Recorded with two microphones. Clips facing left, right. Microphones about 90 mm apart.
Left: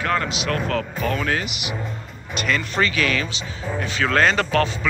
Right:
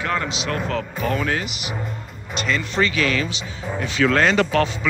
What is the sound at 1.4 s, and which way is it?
Speech, 30° right (ahead or behind).